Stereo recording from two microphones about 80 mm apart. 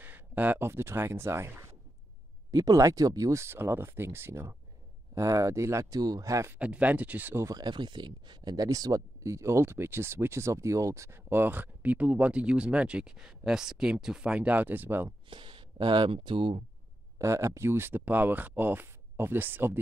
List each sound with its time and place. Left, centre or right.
0.0 s speech: right
2.5 s speech: right
5.1 s speech: right
6.6 s speech: centre
7.4 s speech: right
7.7 s speech: right
8.5 s speech: right
15.2 s speech: right
17.2 s speech: right